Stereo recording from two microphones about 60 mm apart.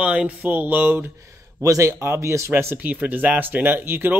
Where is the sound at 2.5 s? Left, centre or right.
Right.